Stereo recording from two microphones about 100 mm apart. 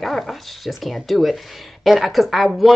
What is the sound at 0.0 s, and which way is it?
Speech, centre (ahead or behind).